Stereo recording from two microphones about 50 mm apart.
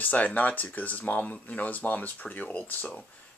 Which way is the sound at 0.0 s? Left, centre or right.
Left.